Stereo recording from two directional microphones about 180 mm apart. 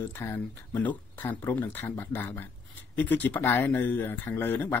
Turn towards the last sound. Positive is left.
turn(degrees=10)  # may be behind; listen again after turning